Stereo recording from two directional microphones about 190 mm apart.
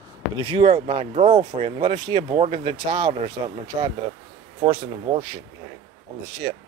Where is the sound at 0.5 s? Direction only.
25° right (ahead or behind).